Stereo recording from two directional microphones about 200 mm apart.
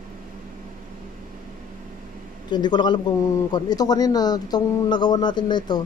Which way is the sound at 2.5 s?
20° left (ahead or behind).